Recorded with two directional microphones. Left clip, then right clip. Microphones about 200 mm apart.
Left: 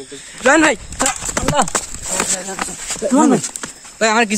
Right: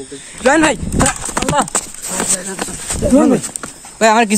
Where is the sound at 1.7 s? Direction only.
45° left (ahead or behind).